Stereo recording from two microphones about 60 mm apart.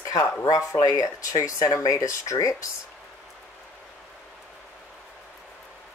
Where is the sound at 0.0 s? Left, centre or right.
Left.